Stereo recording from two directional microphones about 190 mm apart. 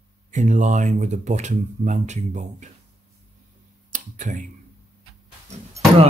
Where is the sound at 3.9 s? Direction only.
45° right (ahead or behind).